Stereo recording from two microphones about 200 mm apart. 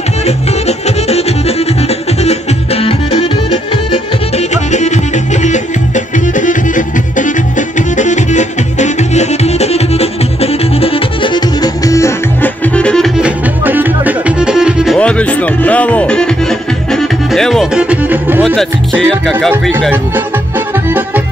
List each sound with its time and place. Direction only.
0.7 s music: 30° left (ahead or behind)
2.2 s music: 30° left (ahead or behind); by 13.3 s centre (ahead or behind)
13.7 s music: 10° right (ahead or behind)
15.0 s speech: 5° left (ahead or behind)
18.4 s speech: centre (ahead or behind)